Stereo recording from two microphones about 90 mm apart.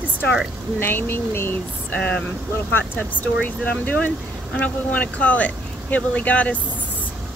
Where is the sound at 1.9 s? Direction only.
15° left (ahead or behind).